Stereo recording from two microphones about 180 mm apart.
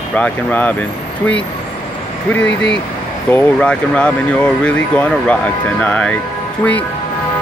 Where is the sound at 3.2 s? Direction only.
10° left (ahead or behind).